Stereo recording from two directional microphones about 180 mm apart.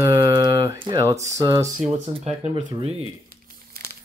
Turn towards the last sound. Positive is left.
turn(degrees=-50)  # may be behind; listen again after turning